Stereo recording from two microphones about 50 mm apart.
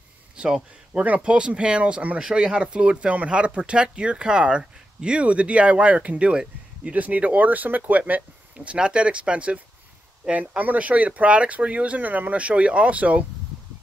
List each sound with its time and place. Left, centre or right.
0.4 s speech: centre
0.9 s speech: right
8.1 s speech: right